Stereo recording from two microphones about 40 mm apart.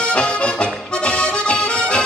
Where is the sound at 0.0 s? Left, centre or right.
Left.